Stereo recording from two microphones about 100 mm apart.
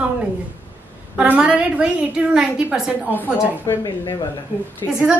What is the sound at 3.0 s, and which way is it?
Speech, 20° left (ahead or behind).